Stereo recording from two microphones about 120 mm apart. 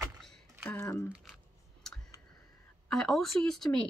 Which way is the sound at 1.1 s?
Centre (ahead or behind).